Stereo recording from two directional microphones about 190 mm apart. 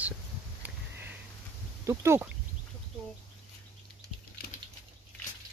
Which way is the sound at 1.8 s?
15° right (ahead or behind).